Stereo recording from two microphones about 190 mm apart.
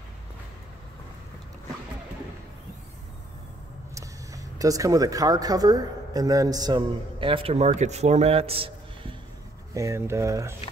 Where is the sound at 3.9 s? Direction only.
15° right (ahead or behind).